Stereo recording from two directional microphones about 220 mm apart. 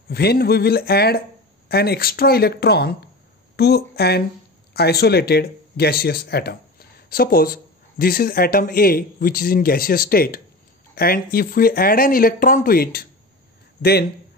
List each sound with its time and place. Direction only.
0.1 s speech: 45° left (ahead or behind)